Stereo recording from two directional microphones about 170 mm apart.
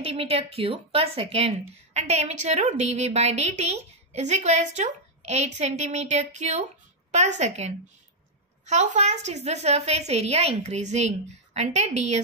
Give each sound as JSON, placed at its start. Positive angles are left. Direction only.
{"t": 0.0, "sound": "a woman's voice", "side_deg": -35}